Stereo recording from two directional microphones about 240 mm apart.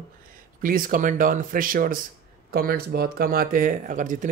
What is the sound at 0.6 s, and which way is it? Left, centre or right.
Speech, right.